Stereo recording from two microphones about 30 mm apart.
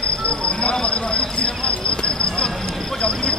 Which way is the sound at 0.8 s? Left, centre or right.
Left.